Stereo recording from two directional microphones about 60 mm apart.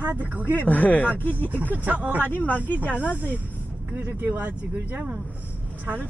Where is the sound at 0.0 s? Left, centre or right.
Right.